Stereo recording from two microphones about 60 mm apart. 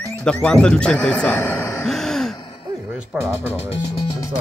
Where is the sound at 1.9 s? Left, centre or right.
Centre.